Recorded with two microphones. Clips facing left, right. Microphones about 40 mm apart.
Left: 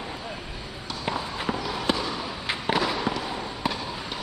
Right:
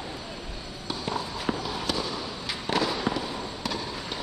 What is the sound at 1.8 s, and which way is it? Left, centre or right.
Fireworks, left.